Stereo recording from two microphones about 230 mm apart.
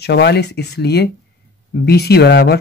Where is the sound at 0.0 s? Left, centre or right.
Left.